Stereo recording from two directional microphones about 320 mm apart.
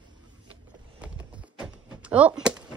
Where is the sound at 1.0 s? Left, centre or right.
Centre.